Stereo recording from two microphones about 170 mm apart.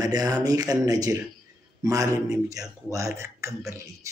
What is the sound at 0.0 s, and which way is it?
A man's voice, 20° right (ahead or behind).